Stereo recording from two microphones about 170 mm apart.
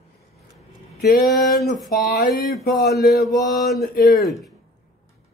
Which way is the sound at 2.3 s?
Centre (ahead or behind).